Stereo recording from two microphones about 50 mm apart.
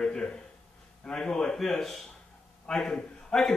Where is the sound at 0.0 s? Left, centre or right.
Centre.